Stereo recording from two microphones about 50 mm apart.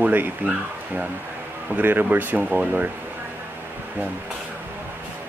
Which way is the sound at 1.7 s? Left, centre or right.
Right.